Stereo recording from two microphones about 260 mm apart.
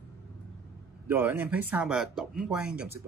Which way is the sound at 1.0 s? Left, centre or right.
Centre.